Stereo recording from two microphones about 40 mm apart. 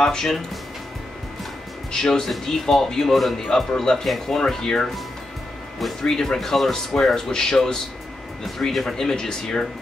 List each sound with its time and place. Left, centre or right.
0.0 s speech: centre
1.9 s speech: centre
6.0 s speech: centre